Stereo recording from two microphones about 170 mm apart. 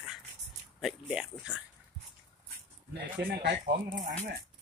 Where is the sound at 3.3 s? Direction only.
85° right.